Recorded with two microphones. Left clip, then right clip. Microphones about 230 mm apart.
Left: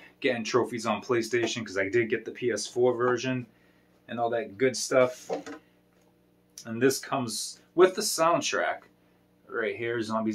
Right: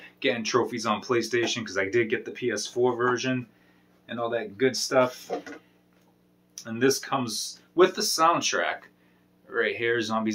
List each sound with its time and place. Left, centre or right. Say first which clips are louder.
0.0 s speech: right 2 dB; centre
6.5 s speech: right 1 dB; centre